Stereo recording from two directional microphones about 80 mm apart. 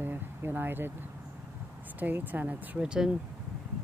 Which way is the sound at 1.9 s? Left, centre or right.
Right.